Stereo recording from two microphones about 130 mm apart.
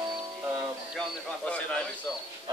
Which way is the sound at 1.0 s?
10° left (ahead or behind).